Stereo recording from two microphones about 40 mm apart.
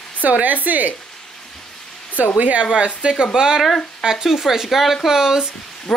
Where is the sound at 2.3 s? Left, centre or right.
Right.